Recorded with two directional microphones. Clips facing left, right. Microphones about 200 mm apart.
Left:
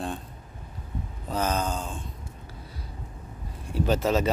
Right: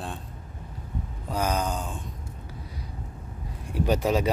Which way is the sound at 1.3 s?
15° right (ahead or behind).